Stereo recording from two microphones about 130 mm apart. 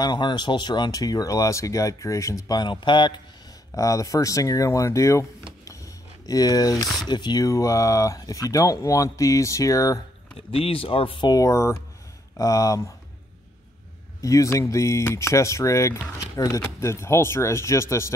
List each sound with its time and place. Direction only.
0.0 s speech: 35° left (ahead or behind)
3.7 s speech: 25° left (ahead or behind)
6.2 s speech: 25° left (ahead or behind)
10.5 s speech: 45° left (ahead or behind); by 12.8 s 25° left (ahead or behind)
14.2 s speech: 25° left (ahead or behind)